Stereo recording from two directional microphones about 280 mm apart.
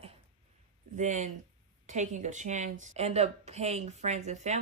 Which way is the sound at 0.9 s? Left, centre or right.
Right.